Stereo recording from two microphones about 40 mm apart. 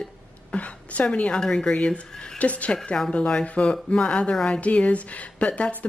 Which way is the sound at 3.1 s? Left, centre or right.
Left.